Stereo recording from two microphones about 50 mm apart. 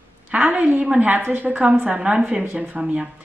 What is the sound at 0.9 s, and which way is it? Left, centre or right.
A woman's voice, right.